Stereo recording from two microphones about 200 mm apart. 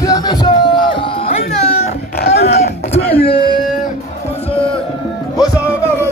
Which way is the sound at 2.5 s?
30° left (ahead or behind).